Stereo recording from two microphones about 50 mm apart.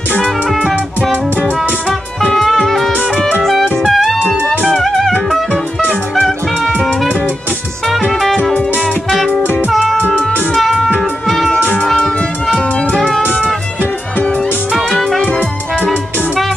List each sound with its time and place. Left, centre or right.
2.3 s music: centre
6.1 s music: centre
8.1 s music: centre
9.7 s music: centre
15.2 s music: left